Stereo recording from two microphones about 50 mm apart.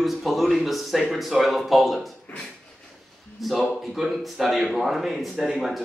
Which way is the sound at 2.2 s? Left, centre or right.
Left.